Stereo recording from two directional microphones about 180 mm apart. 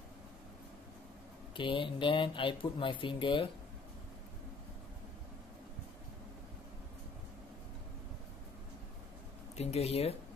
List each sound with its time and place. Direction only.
1.6 s speech: 30° left (ahead or behind)
9.6 s speech: 35° left (ahead or behind)